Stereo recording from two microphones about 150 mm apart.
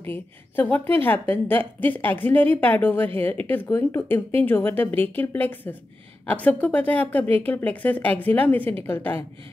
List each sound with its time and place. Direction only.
0.0 s a woman's voice: 15° left (ahead or behind)